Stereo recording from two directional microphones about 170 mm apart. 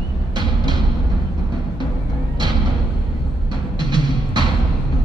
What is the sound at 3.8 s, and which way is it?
Music, 25° right (ahead or behind).